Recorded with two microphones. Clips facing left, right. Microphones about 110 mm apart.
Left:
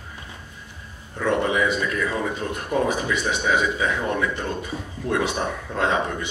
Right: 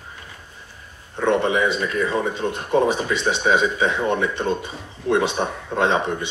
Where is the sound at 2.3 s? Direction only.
25° right (ahead or behind).